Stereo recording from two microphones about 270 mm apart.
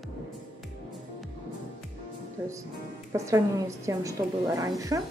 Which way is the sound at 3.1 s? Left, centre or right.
Centre.